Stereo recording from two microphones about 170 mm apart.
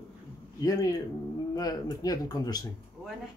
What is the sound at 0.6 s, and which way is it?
Speech, 20° left (ahead or behind).